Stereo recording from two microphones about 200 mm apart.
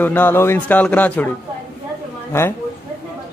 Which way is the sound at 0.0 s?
10° left (ahead or behind).